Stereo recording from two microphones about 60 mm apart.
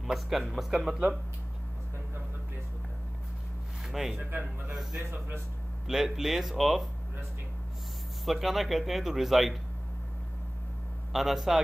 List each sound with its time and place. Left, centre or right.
0.0 s speech: centre
3.8 s speech: centre
4.2 s speech: right
5.9 s speech: centre
8.3 s speech: centre
11.1 s speech: centre